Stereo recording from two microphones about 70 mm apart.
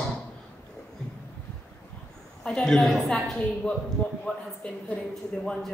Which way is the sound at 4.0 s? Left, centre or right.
Left.